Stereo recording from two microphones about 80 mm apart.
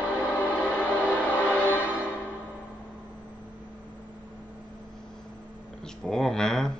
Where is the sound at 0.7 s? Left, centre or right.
Centre.